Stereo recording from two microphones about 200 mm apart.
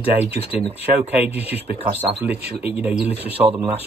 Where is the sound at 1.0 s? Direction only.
10° right (ahead or behind).